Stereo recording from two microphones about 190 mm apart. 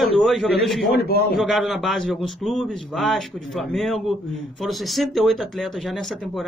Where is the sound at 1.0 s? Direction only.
55° left (ahead or behind).